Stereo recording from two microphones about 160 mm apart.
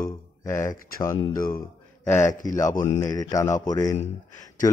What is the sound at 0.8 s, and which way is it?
Speech, 65° left (ahead or behind).